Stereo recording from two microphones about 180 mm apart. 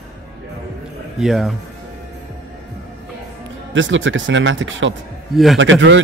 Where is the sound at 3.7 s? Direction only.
90° right.